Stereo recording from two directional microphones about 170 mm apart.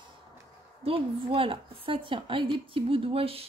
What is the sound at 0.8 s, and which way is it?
A woman's voice, 35° right (ahead or behind).